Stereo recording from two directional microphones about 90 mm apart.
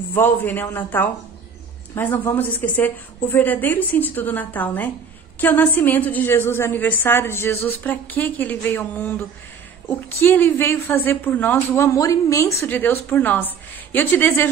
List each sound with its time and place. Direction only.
0.1 s a woman's voice: 25° left (ahead or behind)
11.8 s a woman's voice: 35° left (ahead or behind)
12.6 s a woman's voice: 20° left (ahead or behind)